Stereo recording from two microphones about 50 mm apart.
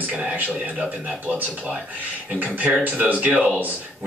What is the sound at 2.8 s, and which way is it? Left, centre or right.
Speech, right.